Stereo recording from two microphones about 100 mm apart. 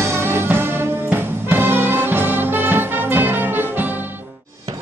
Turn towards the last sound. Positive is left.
turn(degrees=-20)  # may be behind; listen again after turning